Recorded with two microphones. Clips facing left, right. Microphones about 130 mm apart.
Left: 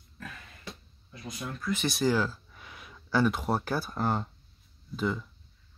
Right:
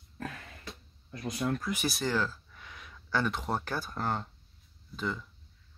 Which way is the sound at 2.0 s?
10° left (ahead or behind).